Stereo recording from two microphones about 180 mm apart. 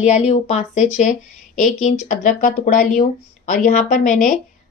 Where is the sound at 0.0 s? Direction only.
35° left (ahead or behind).